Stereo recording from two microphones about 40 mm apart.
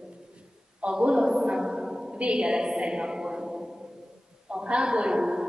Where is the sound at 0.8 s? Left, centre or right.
Right.